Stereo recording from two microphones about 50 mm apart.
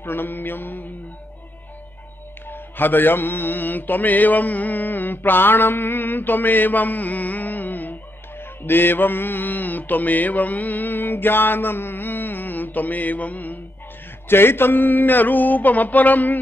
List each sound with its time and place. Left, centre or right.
0.0 s mantra: left
2.4 s mantra: left
14.2 s a sound: left